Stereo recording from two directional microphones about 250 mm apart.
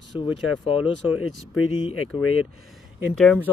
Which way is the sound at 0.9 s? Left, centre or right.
Left.